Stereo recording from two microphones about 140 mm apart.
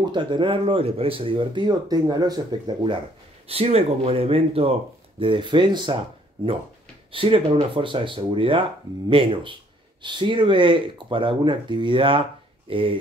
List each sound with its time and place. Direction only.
0.0 s speech: 35° right (ahead or behind)
3.4 s speech: 45° right (ahead or behind)
7.1 s speech: 40° right (ahead or behind)